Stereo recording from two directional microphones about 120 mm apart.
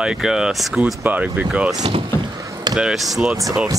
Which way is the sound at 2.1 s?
25° left (ahead or behind).